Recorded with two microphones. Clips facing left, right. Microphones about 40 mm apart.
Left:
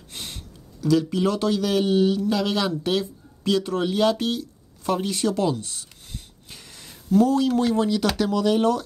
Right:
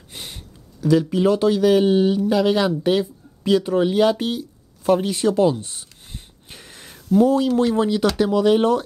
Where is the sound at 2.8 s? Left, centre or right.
Right.